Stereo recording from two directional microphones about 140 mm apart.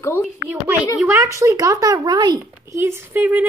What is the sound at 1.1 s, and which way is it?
A woman's voice, 20° right (ahead or behind).